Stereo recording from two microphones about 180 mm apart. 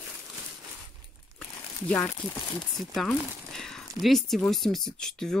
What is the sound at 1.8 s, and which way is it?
Speech, 5° left (ahead or behind).